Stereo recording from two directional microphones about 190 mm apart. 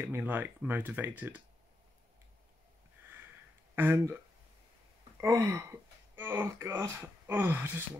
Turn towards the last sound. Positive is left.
turn(degrees=-10)  # may be behind; listen again after turning